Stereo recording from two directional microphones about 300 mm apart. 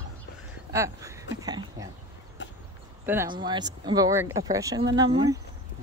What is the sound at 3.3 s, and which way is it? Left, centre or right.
Speech, centre.